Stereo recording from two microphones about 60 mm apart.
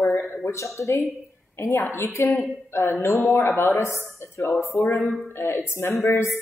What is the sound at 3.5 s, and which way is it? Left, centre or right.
Speech, left.